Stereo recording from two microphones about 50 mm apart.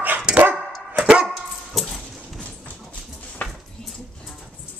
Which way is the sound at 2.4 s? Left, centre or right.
Left.